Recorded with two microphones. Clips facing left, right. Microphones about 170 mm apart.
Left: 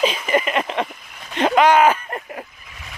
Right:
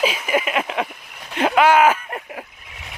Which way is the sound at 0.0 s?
5° right (ahead or behind).